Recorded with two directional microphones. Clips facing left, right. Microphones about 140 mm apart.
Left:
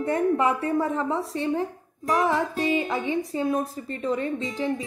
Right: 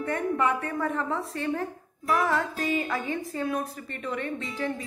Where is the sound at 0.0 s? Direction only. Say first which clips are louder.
Left 4 dB; 30° left (ahead or behind).